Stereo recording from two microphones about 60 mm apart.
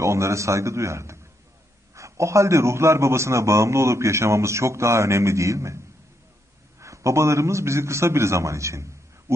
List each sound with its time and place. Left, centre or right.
0.0 s a man's voice: right
6.8 s a man's voice: right